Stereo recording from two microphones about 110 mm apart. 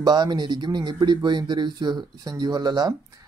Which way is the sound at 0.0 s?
40° right (ahead or behind).